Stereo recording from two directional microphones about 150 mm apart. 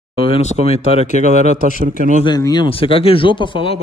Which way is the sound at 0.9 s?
50° left (ahead or behind).